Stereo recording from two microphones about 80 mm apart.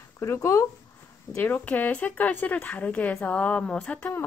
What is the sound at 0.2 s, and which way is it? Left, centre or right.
Speech, left.